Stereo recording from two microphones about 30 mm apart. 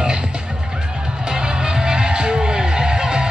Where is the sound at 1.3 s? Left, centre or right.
Right.